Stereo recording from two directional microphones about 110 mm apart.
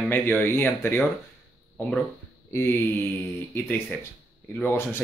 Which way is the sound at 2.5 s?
20° left (ahead or behind).